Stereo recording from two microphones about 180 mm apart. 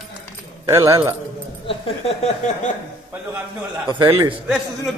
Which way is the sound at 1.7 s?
35° left (ahead or behind).